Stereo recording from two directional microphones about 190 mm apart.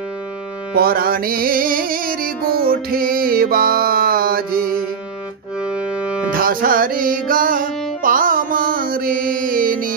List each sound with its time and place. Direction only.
0.7 s music: 50° right (ahead or behind)
5.6 s music: 5° right (ahead or behind)
6.3 s music: 50° right (ahead or behind)